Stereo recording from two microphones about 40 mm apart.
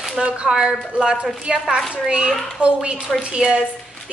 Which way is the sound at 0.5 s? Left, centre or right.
Centre.